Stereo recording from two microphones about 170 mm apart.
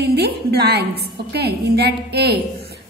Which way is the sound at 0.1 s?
75° right (ahead or behind).